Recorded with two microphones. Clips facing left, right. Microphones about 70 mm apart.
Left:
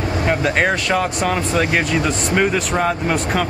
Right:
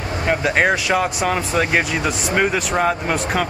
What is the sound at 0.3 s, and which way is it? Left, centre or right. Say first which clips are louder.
Speech: right 1 dB; centre.